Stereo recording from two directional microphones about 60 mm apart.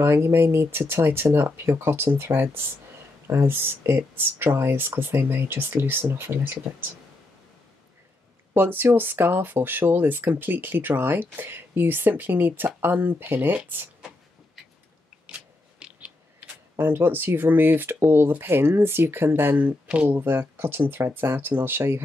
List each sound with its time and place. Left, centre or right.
0.0 s speech: right
8.5 s speech: right
16.3 s speech: right